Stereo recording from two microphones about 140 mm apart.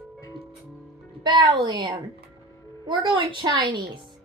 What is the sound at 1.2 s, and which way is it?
Music, 30° right (ahead or behind).